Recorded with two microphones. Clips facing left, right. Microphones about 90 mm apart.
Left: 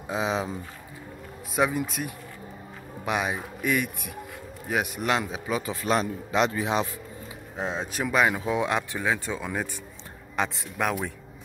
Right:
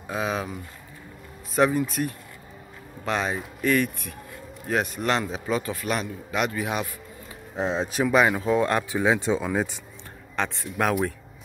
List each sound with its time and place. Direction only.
0.1 s a man's voice: 20° left (ahead or behind)
1.5 s speech: 5° left (ahead or behind)
5.7 s a man's voice: 30° left (ahead or behind)
7.5 s speech: centre (ahead or behind)
9.0 s speech: 20° right (ahead or behind)
10.3 s speech: 5° left (ahead or behind)